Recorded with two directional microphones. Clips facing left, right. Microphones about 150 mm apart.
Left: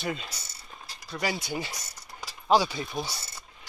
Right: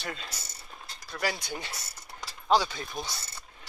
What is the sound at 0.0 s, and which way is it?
Speech, 5° left (ahead or behind).